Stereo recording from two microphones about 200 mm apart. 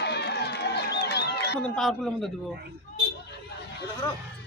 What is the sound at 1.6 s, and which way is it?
Speech, 5° left (ahead or behind).